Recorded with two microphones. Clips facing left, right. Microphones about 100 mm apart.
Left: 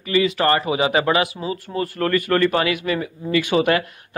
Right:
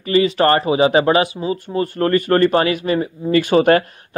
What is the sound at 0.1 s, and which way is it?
A man's voice, 35° right (ahead or behind).